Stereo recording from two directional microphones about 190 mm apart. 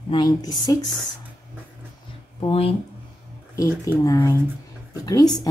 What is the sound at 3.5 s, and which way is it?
Speech, 15° left (ahead or behind).